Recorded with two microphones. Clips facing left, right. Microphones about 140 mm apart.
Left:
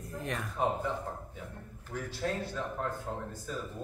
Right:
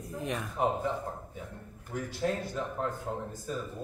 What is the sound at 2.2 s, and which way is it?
Speech, 20° right (ahead or behind).